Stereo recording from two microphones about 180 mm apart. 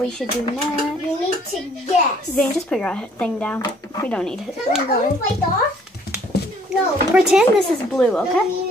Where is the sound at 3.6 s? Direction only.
20° left (ahead or behind).